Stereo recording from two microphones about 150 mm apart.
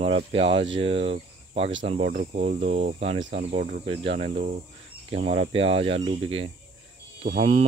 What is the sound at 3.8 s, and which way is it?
Speech, 40° right (ahead or behind).